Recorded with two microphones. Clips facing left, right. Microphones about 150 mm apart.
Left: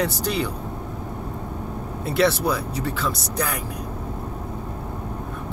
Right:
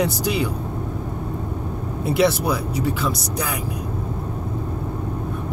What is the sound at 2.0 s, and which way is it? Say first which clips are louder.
Speech: right 2 dB; 10° right (ahead or behind).